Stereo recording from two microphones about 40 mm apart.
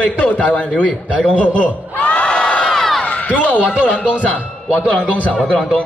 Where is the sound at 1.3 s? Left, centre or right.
Left.